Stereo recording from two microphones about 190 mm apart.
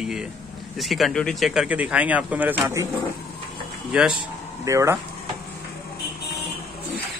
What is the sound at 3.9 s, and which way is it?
Speech, 5° right (ahead or behind).